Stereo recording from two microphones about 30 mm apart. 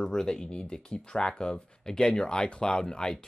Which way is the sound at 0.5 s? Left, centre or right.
Left.